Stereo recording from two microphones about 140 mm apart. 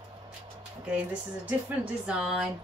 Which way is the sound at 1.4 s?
10° right (ahead or behind).